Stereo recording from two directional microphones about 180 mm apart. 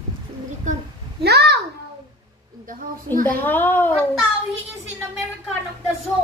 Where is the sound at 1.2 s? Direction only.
65° right (ahead or behind).